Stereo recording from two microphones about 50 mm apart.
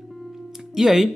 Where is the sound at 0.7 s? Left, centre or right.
Centre.